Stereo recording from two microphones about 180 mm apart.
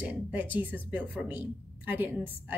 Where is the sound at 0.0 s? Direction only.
10° right (ahead or behind).